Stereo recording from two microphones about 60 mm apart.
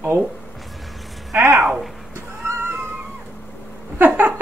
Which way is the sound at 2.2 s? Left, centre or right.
Right.